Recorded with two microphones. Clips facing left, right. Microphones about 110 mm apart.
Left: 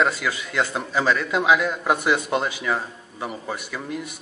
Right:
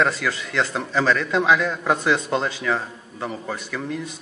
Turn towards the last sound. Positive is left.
turn(degrees=10)  # may be behind; listen again after turning